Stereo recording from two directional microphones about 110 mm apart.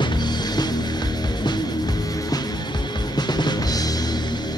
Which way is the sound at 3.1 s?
40° left (ahead or behind).